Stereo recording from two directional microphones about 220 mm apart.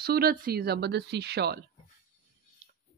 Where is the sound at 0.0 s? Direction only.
45° right (ahead or behind).